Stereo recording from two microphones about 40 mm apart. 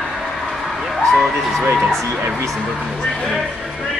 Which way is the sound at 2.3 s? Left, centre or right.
Centre.